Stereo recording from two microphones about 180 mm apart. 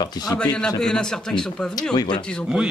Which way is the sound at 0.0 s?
20° left (ahead or behind).